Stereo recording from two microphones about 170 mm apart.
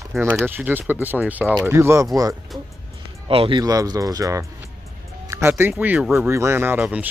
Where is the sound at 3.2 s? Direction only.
30° right (ahead or behind); by 7.0 s 10° right (ahead or behind).